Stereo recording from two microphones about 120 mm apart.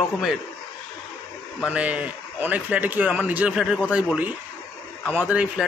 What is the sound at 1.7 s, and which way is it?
A man's voice, 10° right (ahead or behind).